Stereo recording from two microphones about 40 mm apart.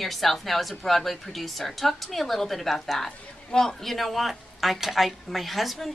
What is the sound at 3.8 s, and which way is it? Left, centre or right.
A woman's voice, centre.